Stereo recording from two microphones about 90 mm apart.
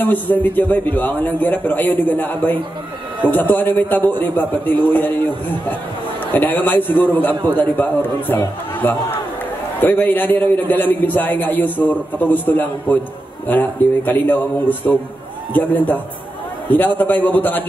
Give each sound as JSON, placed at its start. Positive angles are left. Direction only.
{"t": 0.0, "sound": "a man's voice", "side_deg": 20}
{"t": 6.3, "sound": "a man's voice", "side_deg": 20}